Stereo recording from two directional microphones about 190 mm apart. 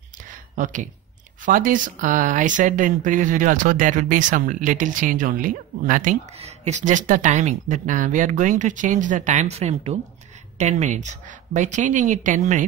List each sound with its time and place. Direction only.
1.4 s a woman's voice: 45° right (ahead or behind)